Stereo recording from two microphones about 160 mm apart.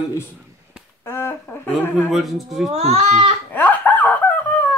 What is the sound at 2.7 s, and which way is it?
Speech, 45° right (ahead or behind).